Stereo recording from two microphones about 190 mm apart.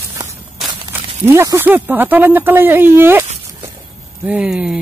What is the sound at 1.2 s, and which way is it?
Speech, 15° right (ahead or behind).